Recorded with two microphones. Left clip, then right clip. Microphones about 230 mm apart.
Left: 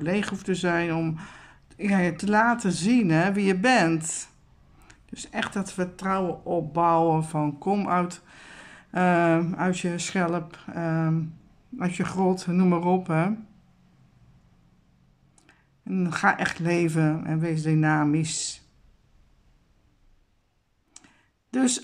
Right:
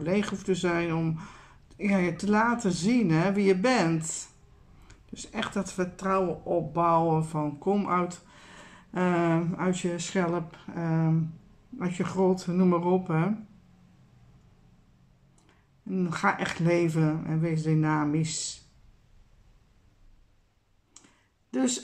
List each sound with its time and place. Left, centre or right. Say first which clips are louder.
0.0 s speech: left 1 dB; left
15.4 s speech: left 3 dB; left
20.9 s clicking: left 4 dB; left